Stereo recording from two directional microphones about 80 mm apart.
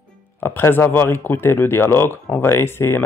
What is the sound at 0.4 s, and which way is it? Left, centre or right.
Speech, left.